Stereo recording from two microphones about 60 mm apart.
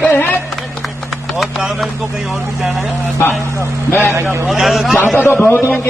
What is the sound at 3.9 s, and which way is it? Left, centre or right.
Speech, left.